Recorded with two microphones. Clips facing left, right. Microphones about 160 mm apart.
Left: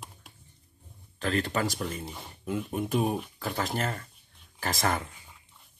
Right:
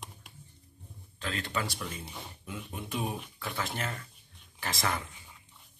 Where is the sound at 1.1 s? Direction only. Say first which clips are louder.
Left 6 dB; 45° left (ahead or behind).